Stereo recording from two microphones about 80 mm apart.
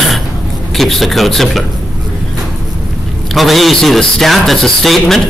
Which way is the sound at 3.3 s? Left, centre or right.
Centre.